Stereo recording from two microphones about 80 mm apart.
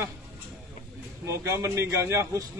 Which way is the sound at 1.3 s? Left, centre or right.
Right.